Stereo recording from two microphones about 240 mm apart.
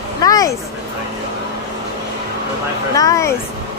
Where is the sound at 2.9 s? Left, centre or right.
Centre.